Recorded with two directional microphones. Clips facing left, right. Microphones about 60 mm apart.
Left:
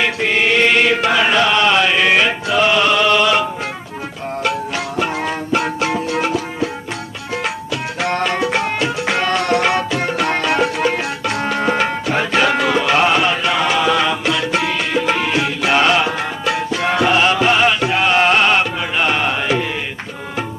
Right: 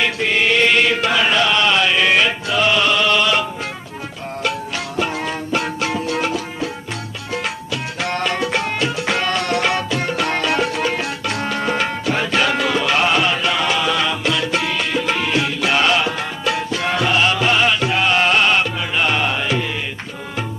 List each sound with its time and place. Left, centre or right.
0.0 s chant: left
4.4 s music: left